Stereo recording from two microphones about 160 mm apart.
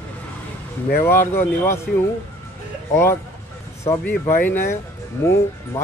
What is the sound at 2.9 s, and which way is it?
Speech, 15° left (ahead or behind).